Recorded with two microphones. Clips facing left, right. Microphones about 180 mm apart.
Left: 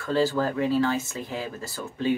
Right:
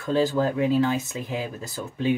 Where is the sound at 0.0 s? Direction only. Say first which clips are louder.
Right 2 dB; 15° right (ahead or behind).